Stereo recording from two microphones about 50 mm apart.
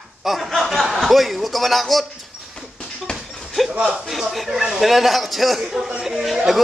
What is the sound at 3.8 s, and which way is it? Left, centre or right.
A man's voice, centre.